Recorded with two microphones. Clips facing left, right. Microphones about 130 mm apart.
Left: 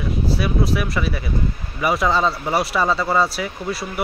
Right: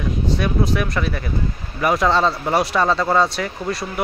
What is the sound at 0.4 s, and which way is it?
Speech, 5° left (ahead or behind).